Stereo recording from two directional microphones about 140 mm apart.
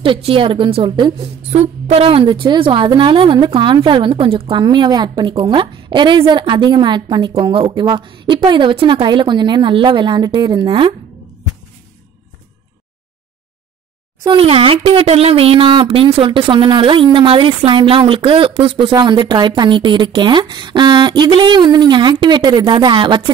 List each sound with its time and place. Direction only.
0.0 s speech: 40° right (ahead or behind)
1.5 s speech: 50° right (ahead or behind)
14.2 s speech: 35° right (ahead or behind)